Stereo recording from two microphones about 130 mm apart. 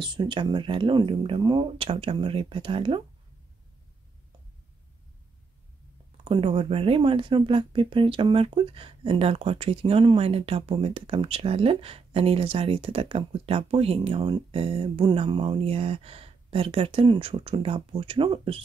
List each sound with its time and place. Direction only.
0.0 s speech: 35° right (ahead or behind)
6.2 s speech: 45° right (ahead or behind)